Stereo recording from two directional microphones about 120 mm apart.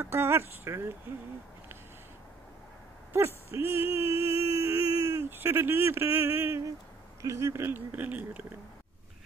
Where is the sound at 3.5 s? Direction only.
20° right (ahead or behind).